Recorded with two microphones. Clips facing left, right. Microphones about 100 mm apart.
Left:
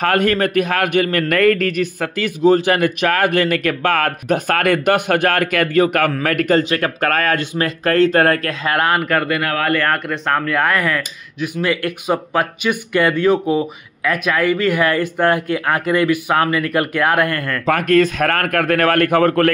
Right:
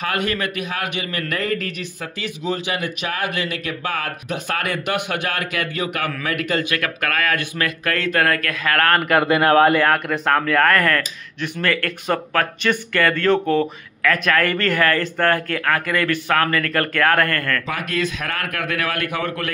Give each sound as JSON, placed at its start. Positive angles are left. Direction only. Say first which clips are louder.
{"t": 0.0, "sound": "speech", "louder": "left 7 dB", "side_deg": 50}
{"t": 9.1, "sound": "speech", "louder": "right 4 dB", "side_deg": -20}
{"t": 9.8, "sound": "speech", "louder": "right 1 dB", "side_deg": -5}
{"t": 17.6, "sound": "speech", "louder": "left 10 dB", "side_deg": 50}